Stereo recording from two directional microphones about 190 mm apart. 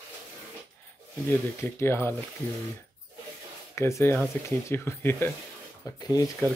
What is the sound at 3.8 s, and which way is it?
Speech, 15° left (ahead or behind).